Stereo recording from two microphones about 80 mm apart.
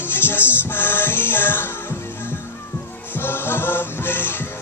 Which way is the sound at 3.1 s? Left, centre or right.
Left.